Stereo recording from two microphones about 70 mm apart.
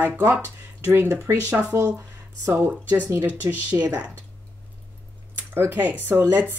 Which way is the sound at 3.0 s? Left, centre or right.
Right.